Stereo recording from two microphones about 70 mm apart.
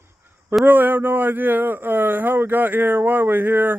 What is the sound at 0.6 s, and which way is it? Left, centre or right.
A man's voice, right.